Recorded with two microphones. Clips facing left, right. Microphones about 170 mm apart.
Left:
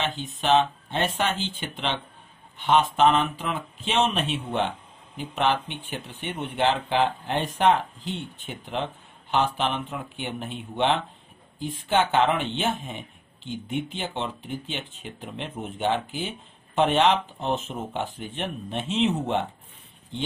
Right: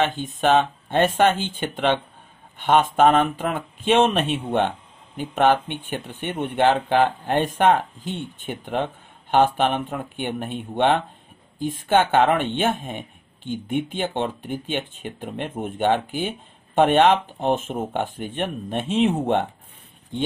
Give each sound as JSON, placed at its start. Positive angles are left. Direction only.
{"t": 0.0, "sound": "speech", "side_deg": -50}